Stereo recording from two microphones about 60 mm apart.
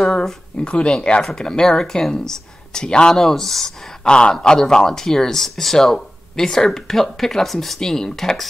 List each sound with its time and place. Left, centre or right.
0.0 s a sound: centre
0.6 s speech: centre
4.0 s speech: centre